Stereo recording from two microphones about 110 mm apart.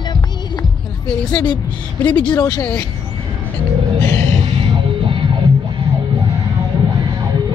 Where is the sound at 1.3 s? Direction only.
45° left (ahead or behind).